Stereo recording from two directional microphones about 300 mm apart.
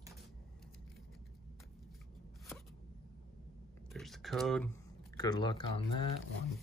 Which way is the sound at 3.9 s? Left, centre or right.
Centre.